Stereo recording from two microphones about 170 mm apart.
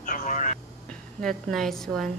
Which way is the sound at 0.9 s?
5° left (ahead or behind).